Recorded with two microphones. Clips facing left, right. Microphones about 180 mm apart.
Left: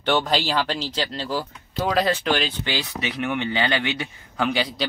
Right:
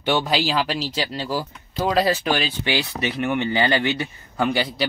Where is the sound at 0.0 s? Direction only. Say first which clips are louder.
Right 1 dB; 10° right (ahead or behind).